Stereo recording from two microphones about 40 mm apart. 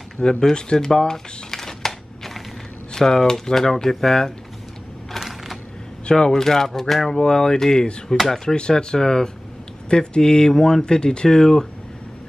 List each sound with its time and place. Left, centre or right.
0.2 s a sound: centre
2.9 s speech: centre
6.0 s speech: centre